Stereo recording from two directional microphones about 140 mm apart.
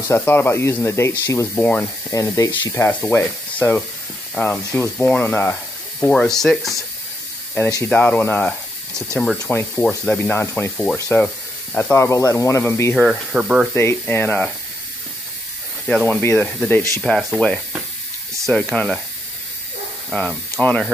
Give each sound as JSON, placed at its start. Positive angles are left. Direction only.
{"t": 0.1, "sound": "speech", "side_deg": 15}
{"t": 7.7, "sound": "speech", "side_deg": 15}
{"t": 11.7, "sound": "speech", "side_deg": 20}
{"t": 12.9, "sound": "speech", "side_deg": -5}
{"t": 13.7, "sound": "speech", "side_deg": 15}
{"t": 16.1, "sound": "speech", "side_deg": 15}
{"t": 17.0, "sound": "speech", "side_deg": 0}